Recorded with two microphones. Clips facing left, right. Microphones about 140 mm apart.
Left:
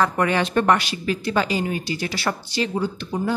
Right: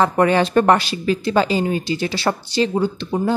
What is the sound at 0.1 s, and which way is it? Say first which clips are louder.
Speech: right 5 dB; 35° right (ahead or behind).